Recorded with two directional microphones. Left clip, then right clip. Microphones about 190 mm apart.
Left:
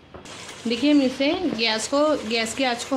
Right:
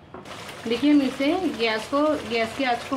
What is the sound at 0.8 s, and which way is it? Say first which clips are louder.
Speech: left 1 dB; 50° left (ahead or behind).